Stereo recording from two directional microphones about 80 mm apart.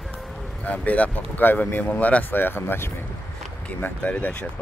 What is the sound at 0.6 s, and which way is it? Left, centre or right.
Speech, centre.